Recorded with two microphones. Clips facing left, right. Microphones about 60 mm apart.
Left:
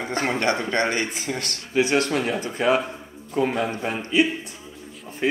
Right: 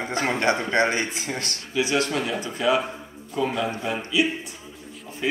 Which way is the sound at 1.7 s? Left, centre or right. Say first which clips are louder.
Left 3 dB; left.